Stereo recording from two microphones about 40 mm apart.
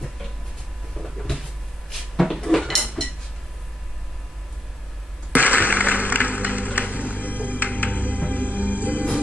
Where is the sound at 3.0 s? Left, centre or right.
Centre.